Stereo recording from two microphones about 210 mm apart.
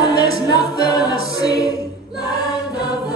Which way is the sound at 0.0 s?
20° left (ahead or behind).